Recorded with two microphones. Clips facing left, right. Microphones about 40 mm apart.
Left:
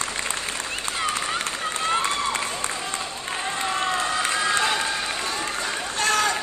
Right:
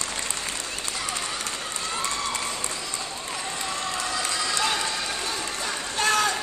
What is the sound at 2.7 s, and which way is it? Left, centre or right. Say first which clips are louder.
Run: left 3 dB; left.